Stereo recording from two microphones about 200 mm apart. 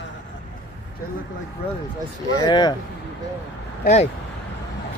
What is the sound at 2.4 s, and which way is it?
Speech, 20° left (ahead or behind).